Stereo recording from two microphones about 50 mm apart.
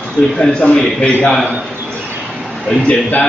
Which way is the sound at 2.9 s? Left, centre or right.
Left.